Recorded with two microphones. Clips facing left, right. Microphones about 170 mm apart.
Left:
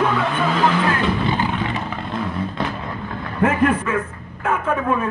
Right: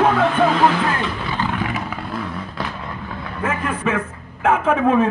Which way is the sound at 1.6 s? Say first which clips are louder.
Even; 5° right (ahead or behind).